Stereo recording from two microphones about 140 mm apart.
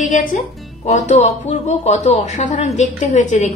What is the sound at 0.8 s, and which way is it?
A woman's voice, 55° left (ahead or behind).